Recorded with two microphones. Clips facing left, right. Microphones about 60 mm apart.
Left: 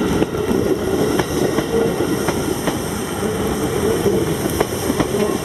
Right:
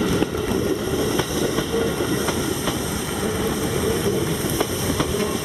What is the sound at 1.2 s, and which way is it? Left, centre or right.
Train, left.